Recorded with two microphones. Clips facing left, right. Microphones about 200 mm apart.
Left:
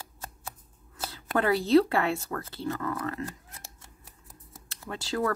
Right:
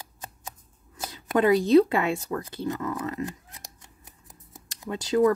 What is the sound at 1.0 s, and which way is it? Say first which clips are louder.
Speech: right 5 dB; 15° right (ahead or behind).